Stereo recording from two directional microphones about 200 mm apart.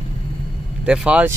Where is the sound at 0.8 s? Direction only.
5° right (ahead or behind).